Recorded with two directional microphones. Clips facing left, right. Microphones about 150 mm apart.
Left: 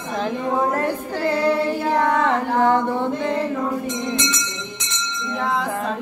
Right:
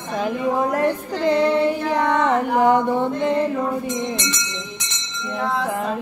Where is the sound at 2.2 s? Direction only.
20° right (ahead or behind).